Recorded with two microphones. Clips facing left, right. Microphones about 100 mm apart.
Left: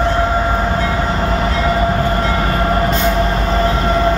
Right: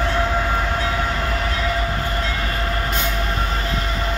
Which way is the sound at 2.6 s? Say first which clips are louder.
Left 9 dB; 55° left (ahead or behind).